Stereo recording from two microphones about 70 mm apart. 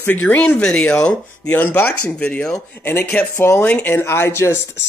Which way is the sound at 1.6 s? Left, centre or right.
Left.